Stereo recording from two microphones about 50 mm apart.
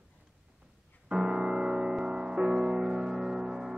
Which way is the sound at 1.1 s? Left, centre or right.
Centre.